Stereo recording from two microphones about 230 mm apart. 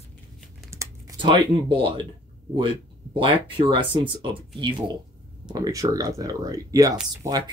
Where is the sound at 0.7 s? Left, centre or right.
Centre.